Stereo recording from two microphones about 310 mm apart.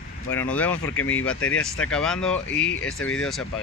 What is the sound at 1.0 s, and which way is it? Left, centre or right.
Speech, left.